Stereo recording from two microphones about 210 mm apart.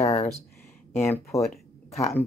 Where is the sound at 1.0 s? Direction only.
15° left (ahead or behind).